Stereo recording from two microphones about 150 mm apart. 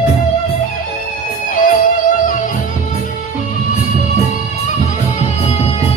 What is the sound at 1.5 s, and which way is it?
Music, 70° left (ahead or behind).